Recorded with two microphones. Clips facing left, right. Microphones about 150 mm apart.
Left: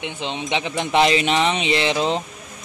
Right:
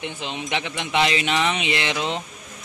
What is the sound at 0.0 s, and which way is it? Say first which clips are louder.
Speech: left 3 dB; 20° left (ahead or behind).